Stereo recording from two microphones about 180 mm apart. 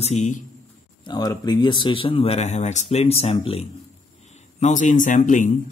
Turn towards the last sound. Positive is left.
turn(degrees=45)  # may be behind; listen again after turning